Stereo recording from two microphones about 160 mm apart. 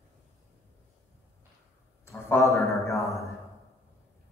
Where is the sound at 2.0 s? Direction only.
15° left (ahead or behind).